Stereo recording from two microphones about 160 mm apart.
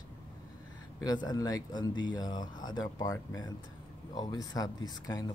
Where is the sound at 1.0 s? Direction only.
25° left (ahead or behind).